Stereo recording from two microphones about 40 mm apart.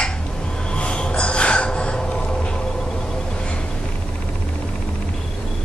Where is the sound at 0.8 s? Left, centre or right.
Left.